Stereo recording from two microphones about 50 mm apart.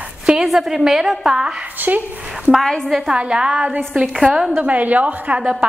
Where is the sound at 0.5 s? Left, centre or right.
Centre.